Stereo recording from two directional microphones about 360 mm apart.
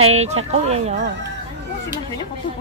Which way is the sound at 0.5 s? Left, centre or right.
Centre.